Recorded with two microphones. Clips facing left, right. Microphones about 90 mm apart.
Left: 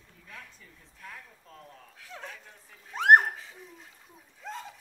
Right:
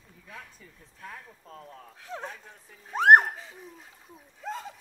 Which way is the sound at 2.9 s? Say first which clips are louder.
Right 2 dB; 35° right (ahead or behind).